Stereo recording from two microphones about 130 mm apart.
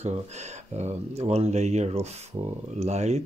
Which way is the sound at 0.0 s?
60° right (ahead or behind).